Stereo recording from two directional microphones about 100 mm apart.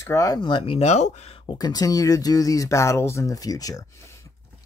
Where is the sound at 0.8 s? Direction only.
90° left.